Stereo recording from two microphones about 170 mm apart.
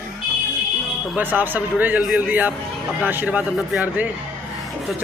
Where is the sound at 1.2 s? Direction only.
10° right (ahead or behind).